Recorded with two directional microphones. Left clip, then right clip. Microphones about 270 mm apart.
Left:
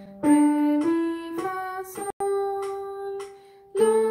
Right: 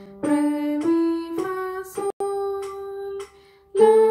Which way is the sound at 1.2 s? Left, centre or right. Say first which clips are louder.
Right 2 dB; centre.